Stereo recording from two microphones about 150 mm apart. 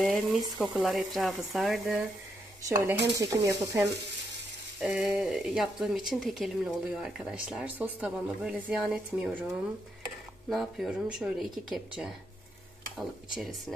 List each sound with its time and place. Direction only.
0.0 s speech: centre (ahead or behind)
2.6 s speech: 20° right (ahead or behind)
4.7 s speech: 5° right (ahead or behind)
10.5 s speech: centre (ahead or behind)
12.9 s speech: centre (ahead or behind)